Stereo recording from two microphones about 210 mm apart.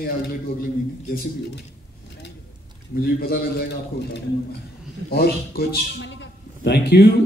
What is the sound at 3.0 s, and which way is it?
Speech, 45° left (ahead or behind).